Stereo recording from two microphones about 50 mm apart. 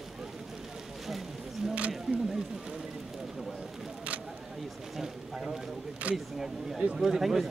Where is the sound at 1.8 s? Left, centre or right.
Right.